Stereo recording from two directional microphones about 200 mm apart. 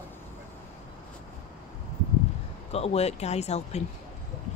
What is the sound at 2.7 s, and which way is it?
Speech, 30° left (ahead or behind).